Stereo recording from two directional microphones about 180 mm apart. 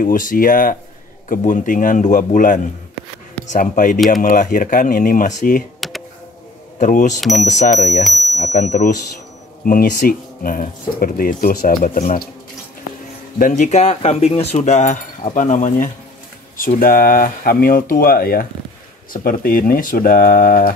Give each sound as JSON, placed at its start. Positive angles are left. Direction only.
{"t": 0.0, "sound": "speech", "side_deg": 50}
{"t": 5.8, "sound": "computer keyboard", "side_deg": 0}
{"t": 6.8, "sound": "speech", "side_deg": 45}
{"t": 7.2, "sound": "speech", "side_deg": 0}
{"t": 8.4, "sound": "speech", "side_deg": 40}
{"t": 13.4, "sound": "speech", "side_deg": 40}